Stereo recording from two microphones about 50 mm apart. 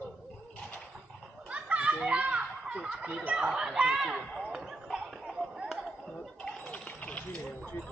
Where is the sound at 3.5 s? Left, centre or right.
Centre.